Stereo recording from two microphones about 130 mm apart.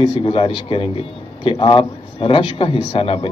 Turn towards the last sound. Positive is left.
turn(degrees=45)  # may be behind; listen again after turning